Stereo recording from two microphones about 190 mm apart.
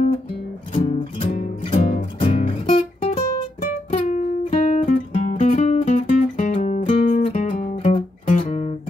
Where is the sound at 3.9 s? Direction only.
40° left (ahead or behind).